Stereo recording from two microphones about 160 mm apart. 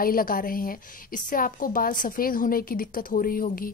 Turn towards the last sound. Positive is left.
turn(degrees=60)  # may be behind; listen again after turning